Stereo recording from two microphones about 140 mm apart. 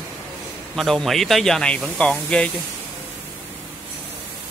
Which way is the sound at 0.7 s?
Centre (ahead or behind).